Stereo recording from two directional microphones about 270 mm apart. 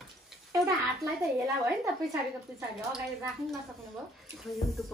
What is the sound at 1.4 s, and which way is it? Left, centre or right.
A woman's voice, centre.